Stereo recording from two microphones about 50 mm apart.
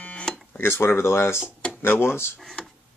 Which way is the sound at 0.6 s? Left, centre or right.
Left.